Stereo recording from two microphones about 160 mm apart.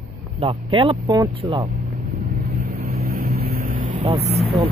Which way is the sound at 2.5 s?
60° right (ahead or behind).